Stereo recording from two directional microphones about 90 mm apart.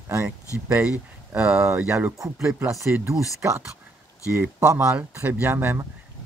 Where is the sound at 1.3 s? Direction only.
25° right (ahead or behind).